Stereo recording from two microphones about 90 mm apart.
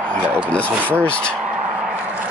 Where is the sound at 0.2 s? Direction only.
15° right (ahead or behind).